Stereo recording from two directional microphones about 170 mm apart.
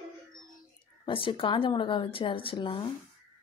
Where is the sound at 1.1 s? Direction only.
30° left (ahead or behind).